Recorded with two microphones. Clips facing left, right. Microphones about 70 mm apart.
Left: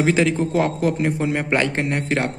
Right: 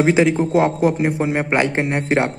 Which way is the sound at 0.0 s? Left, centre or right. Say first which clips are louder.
Right 3 dB; centre.